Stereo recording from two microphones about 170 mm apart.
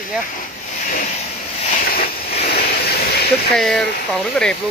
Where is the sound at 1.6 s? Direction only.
55° left (ahead or behind).